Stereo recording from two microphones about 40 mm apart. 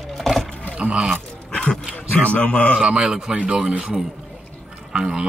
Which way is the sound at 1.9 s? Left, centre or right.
Left.